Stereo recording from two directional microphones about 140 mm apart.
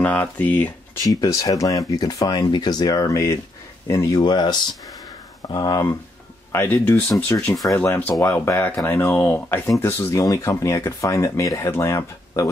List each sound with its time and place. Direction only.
0.0 s speech: 10° left (ahead or behind)
1.0 s speech: 25° left (ahead or behind)
6.5 s speech: 15° left (ahead or behind)